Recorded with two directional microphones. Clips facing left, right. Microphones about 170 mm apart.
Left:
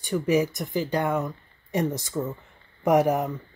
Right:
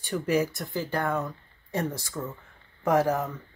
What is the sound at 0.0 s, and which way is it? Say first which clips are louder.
Speech: left 3 dB; 15° left (ahead or behind).